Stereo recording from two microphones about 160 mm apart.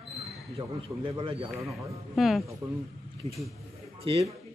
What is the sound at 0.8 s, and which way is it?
Speech, 35° right (ahead or behind).